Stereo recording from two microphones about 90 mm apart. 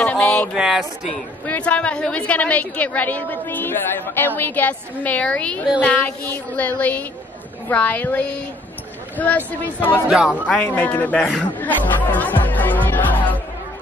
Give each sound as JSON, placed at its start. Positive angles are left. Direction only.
{"t": 0.0, "sound": "a sound", "side_deg": 15}
{"t": 0.6, "sound": "speech", "side_deg": -5}
{"t": 1.4, "sound": "a woman's voice", "side_deg": 15}
{"t": 10.0, "sound": "speech", "side_deg": -5}
{"t": 10.7, "sound": "a woman's voice", "side_deg": 20}
{"t": 11.1, "sound": "speech", "side_deg": 0}
{"t": 11.5, "sound": "speech", "side_deg": 20}